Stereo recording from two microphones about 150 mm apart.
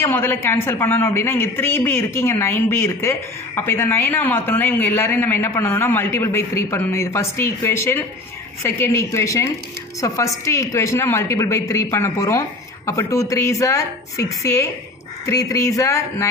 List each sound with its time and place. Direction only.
0.0 s a man's voice: 15° left (ahead or behind)